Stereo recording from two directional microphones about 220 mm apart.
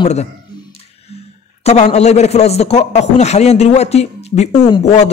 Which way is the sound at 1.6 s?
30° left (ahead or behind).